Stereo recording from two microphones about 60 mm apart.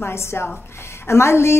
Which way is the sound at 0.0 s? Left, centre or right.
Left.